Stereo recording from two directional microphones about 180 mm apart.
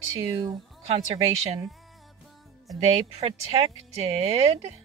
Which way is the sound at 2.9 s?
35° right (ahead or behind).